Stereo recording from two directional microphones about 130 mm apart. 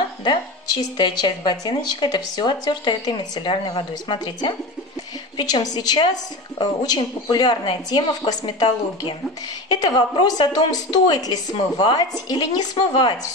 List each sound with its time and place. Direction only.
0.2 s speech: 35° left (ahead or behind)